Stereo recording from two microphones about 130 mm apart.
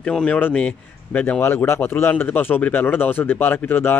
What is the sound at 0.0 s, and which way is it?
Speech, 10° left (ahead or behind).